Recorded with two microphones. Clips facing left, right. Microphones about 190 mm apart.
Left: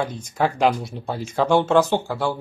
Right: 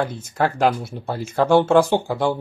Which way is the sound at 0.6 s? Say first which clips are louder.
Even; centre (ahead or behind).